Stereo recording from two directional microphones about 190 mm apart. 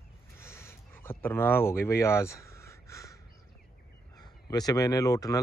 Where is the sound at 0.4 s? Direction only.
15° left (ahead or behind).